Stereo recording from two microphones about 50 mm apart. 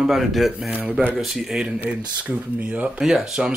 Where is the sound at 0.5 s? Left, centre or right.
Right.